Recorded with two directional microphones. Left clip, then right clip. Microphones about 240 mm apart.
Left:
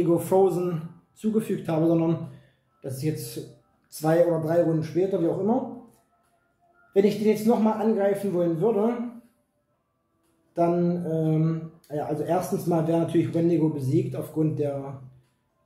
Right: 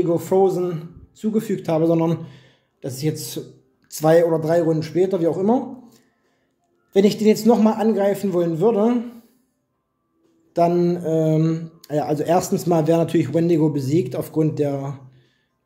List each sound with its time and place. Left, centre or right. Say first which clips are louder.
0.1 s speech: right 2 dB; right
6.9 s speech: right 5 dB; right
10.5 s speech: right 6 dB; right